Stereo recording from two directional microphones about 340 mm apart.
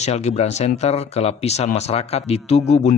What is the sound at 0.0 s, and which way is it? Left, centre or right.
Speech, centre.